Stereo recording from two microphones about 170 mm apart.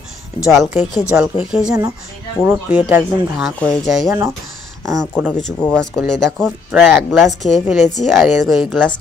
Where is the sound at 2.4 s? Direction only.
10° right (ahead or behind).